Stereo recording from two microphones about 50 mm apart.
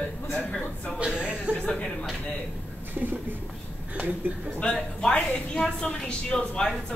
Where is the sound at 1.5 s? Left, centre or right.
Right.